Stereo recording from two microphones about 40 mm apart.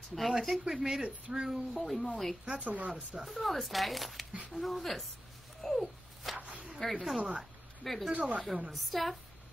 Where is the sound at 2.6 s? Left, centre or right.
Right.